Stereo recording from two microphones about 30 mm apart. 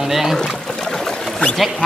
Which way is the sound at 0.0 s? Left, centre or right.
Centre.